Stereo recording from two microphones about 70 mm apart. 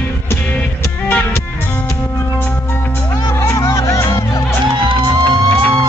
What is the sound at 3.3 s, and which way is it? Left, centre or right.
Music, left.